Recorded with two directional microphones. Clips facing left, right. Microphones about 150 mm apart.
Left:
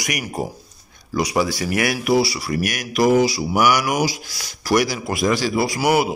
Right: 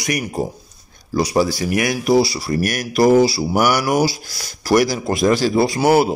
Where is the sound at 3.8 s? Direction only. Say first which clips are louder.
Right 4 dB; 30° right (ahead or behind).